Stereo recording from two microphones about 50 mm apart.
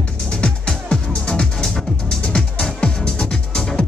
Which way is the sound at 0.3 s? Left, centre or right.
Centre.